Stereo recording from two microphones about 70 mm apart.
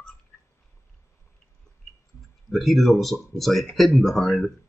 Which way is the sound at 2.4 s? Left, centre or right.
Centre.